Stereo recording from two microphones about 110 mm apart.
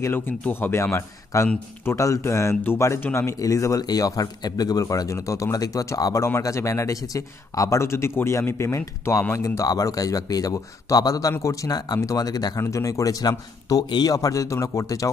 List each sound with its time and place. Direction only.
0.0 s a man's voice: 20° left (ahead or behind)